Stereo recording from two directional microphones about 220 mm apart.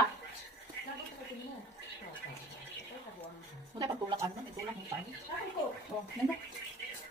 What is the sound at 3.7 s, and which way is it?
Speech, 20° right (ahead or behind).